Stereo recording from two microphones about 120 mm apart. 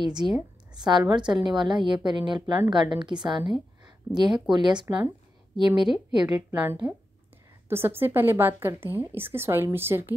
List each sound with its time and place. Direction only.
0.0 s a woman's voice: 35° right (ahead or behind)
6.2 s a woman's voice: 15° right (ahead or behind)